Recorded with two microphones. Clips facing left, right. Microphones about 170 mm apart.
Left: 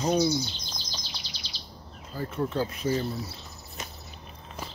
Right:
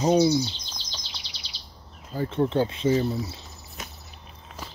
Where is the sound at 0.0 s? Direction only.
20° right (ahead or behind).